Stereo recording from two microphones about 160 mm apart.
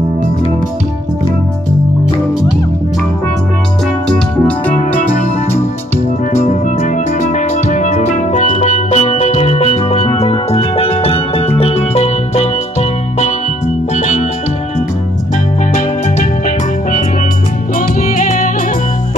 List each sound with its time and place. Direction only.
4.1 s music: 10° left (ahead or behind)
7.2 s music: 50° left (ahead or behind)
15.7 s music: 60° left (ahead or behind)